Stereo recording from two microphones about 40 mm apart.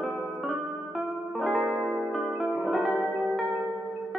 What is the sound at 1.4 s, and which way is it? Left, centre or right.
Music, centre.